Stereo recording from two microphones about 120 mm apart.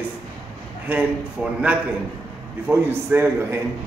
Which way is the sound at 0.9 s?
10° right (ahead or behind).